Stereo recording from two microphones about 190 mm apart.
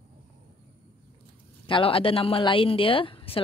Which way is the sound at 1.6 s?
30° left (ahead or behind).